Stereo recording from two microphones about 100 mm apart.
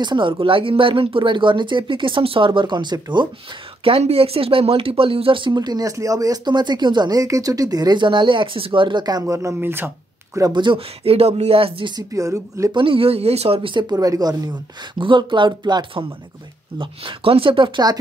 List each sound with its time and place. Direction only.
0.0 s speech: 55° right (ahead or behind)
3.8 s speech: 75° right (ahead or behind); by 9.2 s 45° right (ahead or behind)
9.2 s speech: 30° right (ahead or behind)
10.4 s speech: 50° right (ahead or behind)
11.1 s speech: 85° right; by 11.9 s 70° right (ahead or behind)
12.1 s speech: 35° right (ahead or behind)
12.7 s speech: 65° right (ahead or behind)
13.9 s speech: 40° right (ahead or behind)
15.0 s speech: 55° right (ahead or behind)
16.7 s speech: 60° right (ahead or behind)